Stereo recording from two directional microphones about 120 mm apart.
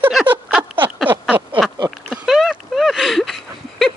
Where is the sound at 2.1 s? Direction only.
Centre (ahead or behind).